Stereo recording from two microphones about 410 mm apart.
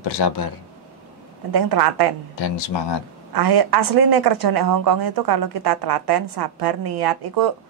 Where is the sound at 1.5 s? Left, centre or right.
Right.